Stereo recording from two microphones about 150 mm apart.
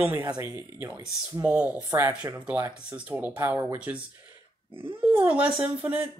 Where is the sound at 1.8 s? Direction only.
25° right (ahead or behind).